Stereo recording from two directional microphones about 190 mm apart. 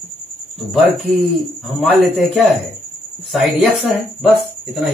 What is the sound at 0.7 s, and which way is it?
A man's voice, centre (ahead or behind).